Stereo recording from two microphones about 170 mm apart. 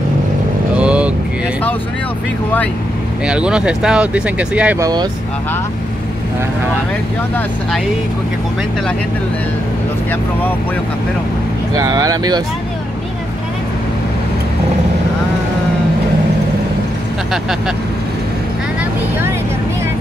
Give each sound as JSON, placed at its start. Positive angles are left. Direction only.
{"t": 0.7, "sound": "vehicle", "side_deg": -5}
{"t": 3.3, "sound": "speech", "side_deg": -5}
{"t": 4.7, "sound": "speech", "side_deg": -20}
{"t": 11.7, "sound": "speech", "side_deg": -20}
{"t": 17.3, "sound": "speech", "side_deg": -5}